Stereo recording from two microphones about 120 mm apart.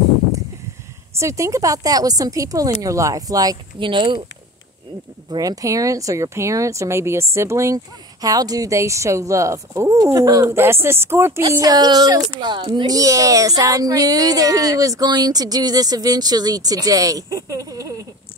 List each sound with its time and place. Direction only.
1.2 s speech: 25° right (ahead or behind)
3.8 s a child's voice: 40° right (ahead or behind)
5.3 s speech: 30° right (ahead or behind)
11.5 s a child's voice: 35° right (ahead or behind)